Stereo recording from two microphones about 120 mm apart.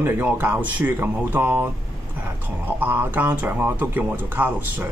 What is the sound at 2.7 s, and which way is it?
Speech, 15° right (ahead or behind).